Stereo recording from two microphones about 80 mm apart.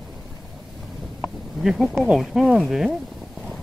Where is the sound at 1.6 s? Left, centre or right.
Centre.